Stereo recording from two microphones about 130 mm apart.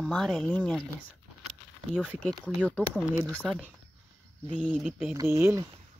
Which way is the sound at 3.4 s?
5° right (ahead or behind).